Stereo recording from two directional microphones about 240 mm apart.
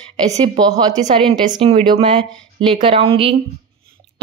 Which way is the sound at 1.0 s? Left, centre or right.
Right.